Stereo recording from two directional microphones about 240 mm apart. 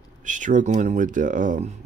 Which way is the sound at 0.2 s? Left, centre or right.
Right.